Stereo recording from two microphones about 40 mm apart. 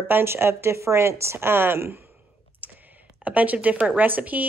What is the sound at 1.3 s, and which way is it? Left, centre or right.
Speech, right.